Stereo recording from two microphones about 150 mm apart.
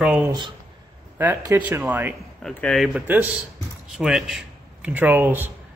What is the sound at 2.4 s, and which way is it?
A man's voice, 5° left (ahead or behind).